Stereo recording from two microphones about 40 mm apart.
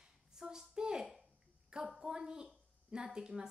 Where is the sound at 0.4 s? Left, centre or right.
Centre.